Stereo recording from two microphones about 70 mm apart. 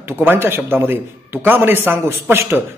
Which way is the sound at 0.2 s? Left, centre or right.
Right.